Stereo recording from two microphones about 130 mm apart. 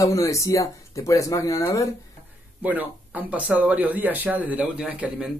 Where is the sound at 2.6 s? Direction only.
10° right (ahead or behind).